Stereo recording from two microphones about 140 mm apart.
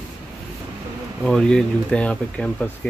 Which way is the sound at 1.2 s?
5° left (ahead or behind).